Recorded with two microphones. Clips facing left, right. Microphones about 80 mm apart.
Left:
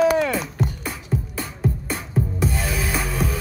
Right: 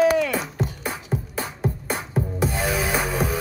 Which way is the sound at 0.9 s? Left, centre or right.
Right.